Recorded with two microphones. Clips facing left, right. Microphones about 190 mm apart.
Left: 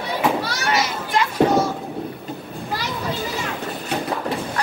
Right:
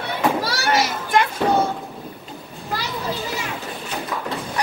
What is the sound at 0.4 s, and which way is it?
Children playing, 50° right (ahead or behind).